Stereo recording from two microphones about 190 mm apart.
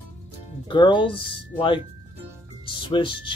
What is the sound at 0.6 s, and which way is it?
Speech, 25° left (ahead or behind).